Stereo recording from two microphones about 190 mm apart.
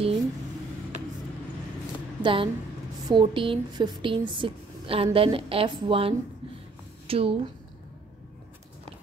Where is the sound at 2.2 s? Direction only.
25° right (ahead or behind).